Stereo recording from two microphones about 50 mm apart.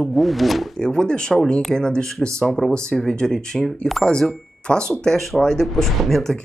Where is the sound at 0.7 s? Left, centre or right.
Centre.